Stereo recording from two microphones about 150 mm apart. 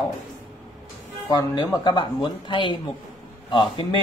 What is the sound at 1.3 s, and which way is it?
A man's voice, 25° left (ahead or behind).